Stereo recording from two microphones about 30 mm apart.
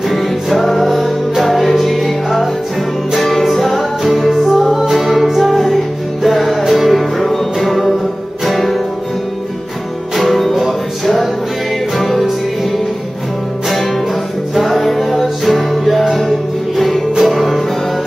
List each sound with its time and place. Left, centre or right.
0.1 s music: centre
10.1 s music: centre
12.0 s music: centre
14.6 s music: centre